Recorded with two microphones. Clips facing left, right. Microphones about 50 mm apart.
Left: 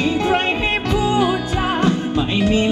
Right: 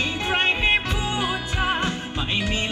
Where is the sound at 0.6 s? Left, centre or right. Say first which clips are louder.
Left 2 dB; right.